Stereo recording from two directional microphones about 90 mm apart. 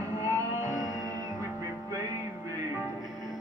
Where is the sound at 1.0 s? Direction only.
40° right (ahead or behind).